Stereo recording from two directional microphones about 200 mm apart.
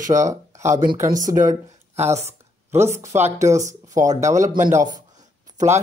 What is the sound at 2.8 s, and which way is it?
Speech, 15° right (ahead or behind).